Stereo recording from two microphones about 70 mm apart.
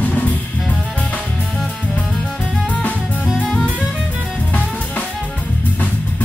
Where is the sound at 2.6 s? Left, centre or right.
Left.